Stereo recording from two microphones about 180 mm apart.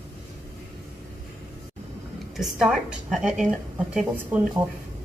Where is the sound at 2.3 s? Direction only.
Centre (ahead or behind).